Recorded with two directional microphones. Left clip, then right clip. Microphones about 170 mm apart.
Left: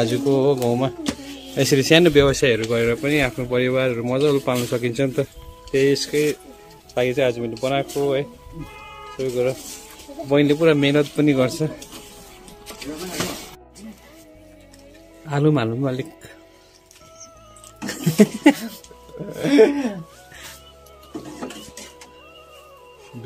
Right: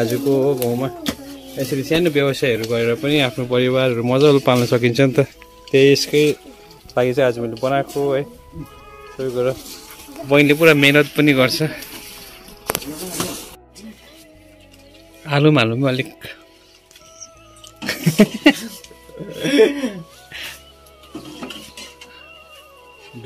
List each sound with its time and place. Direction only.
0.0 s a man's voice: 5° left (ahead or behind)
0.5 s speech: 20° left (ahead or behind)
1.7 s music: 65° left (ahead or behind)
2.3 s a man's voice: centre (ahead or behind)
3.0 s a man's voice: 20° right (ahead or behind); by 6.0 s 35° right (ahead or behind)
6.9 s a man's voice: 25° right (ahead or behind); by 11.8 s 5° left (ahead or behind)
15.2 s speech: 10° right (ahead or behind)
17.7 s a sound: 10° right (ahead or behind)
19.4 s music: 55° left (ahead or behind)